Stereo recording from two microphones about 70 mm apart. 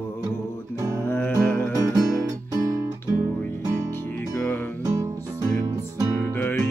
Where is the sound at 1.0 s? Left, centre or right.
Left.